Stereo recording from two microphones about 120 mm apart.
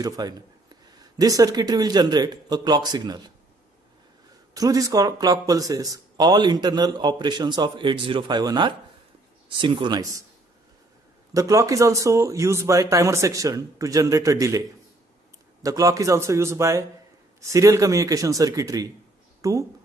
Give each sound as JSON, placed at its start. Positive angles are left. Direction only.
{"t": 0.0, "sound": "speech", "side_deg": -35}
{"t": 4.6, "sound": "speech", "side_deg": -30}
{"t": 11.3, "sound": "speech", "side_deg": -30}
{"t": 15.6, "sound": "speech", "side_deg": -30}